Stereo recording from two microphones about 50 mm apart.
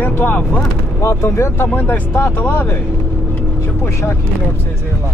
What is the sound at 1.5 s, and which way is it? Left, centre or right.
Speech, left.